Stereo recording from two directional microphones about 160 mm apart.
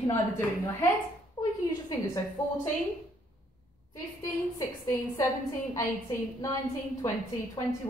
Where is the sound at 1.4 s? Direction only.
25° left (ahead or behind).